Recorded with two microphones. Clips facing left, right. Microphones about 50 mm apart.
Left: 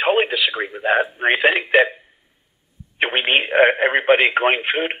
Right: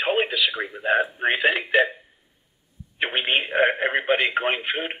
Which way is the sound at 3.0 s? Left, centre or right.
Left.